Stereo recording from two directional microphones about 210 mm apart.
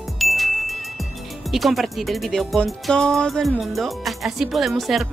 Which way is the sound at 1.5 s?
Centre (ahead or behind).